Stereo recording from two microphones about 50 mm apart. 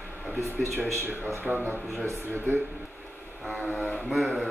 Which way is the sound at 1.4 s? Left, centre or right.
Right.